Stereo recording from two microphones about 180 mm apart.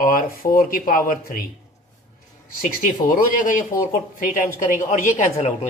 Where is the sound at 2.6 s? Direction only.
50° left (ahead or behind).